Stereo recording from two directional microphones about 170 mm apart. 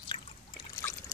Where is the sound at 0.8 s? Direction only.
20° left (ahead or behind).